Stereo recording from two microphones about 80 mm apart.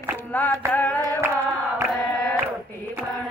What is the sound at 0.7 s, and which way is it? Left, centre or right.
Singing, left.